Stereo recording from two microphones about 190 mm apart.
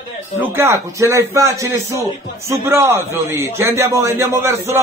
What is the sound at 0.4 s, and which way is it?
A man's voice, 10° right (ahead or behind).